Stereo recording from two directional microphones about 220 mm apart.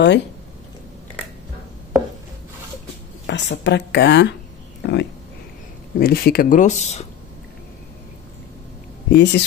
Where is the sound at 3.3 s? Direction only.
55° left (ahead or behind); by 7.1 s 30° left (ahead or behind).